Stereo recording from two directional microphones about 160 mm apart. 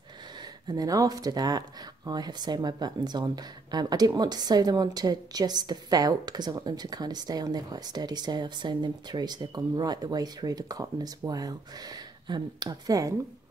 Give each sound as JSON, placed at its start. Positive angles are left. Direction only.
{"t": 0.4, "sound": "a woman's voice", "side_deg": -25}